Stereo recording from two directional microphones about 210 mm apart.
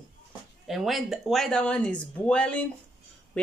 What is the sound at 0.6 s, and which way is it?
Speech, centre (ahead or behind).